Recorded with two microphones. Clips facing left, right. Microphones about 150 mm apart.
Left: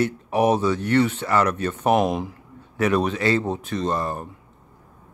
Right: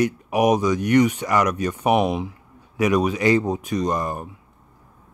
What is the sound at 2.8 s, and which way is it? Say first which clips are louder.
Speech: right 1 dB; 10° right (ahead or behind).